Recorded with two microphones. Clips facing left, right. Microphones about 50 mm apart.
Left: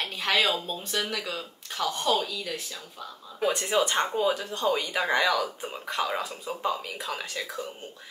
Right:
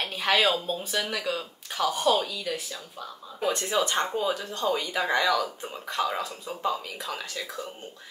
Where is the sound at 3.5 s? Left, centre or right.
Centre.